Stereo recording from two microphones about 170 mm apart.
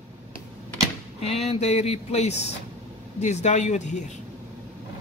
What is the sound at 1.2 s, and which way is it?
Speech, 40° left (ahead or behind).